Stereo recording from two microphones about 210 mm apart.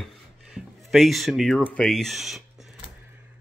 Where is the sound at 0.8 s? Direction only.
Centre (ahead or behind).